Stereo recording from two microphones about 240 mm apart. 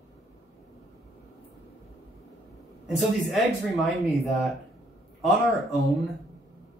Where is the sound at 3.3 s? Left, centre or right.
Centre.